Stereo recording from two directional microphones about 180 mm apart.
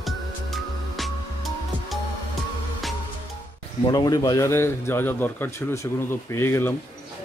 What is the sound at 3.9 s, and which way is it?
A man's voice, 20° left (ahead or behind).